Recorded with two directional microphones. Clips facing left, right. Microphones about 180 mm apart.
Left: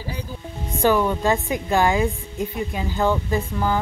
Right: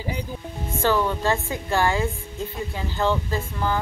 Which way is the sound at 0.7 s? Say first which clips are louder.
Left 3 dB; 15° left (ahead or behind).